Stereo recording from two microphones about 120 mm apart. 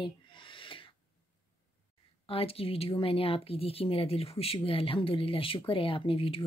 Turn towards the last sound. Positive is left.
turn(degrees=50)  # may be behind; listen again after turning